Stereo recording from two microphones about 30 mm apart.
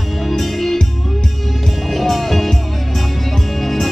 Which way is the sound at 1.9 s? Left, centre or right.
Centre.